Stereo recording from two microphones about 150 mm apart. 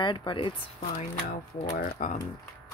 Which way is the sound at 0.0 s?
35° left (ahead or behind).